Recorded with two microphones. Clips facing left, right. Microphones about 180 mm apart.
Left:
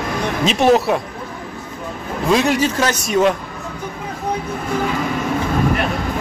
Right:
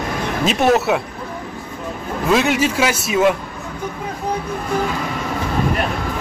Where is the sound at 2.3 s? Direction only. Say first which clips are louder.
Even; 5° right (ahead or behind).